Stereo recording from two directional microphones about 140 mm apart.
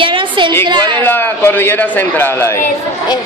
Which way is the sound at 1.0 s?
15° left (ahead or behind).